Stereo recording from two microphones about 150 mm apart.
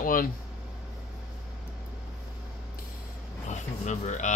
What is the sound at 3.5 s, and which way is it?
Speech, 50° left (ahead or behind).